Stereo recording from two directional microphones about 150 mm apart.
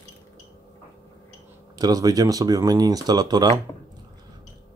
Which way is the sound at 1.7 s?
25° right (ahead or behind).